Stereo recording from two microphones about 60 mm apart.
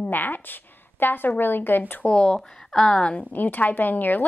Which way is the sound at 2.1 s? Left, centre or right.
Centre.